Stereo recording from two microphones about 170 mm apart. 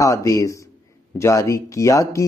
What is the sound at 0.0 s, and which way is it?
A man's voice, 20° left (ahead or behind).